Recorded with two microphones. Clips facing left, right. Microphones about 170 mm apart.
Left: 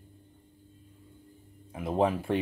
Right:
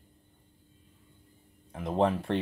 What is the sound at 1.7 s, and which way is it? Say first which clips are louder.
Speech: even; 5° left (ahead or behind).